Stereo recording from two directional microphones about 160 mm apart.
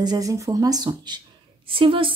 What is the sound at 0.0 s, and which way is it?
A woman's voice, 25° right (ahead or behind).